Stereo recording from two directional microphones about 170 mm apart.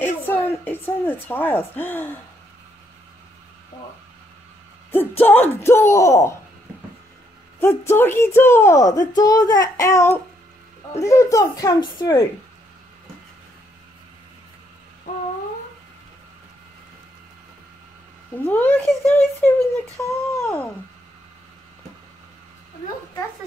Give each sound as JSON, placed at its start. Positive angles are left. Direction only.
{"t": 0.0, "sound": "a woman's voice", "side_deg": 10}
{"t": 4.9, "sound": "speech", "side_deg": 10}
{"t": 7.6, "sound": "speech", "side_deg": 15}
{"t": 18.4, "sound": "speech", "side_deg": 10}